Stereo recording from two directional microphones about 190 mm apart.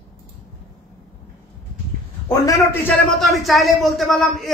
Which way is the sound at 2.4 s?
10° left (ahead or behind).